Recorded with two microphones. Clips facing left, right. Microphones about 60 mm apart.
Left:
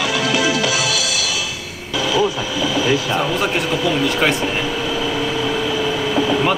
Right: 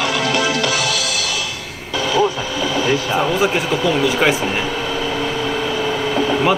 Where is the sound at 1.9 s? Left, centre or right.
Right.